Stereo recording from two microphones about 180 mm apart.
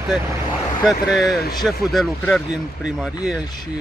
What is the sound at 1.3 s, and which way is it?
Speech, 60° left (ahead or behind).